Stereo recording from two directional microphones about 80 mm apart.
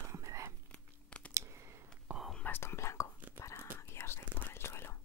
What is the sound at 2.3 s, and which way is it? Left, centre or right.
Whispering, left.